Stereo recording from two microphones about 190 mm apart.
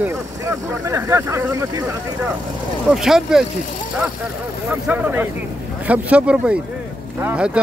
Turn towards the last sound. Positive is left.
turn(degrees=-5)  # may be behind; listen again after turning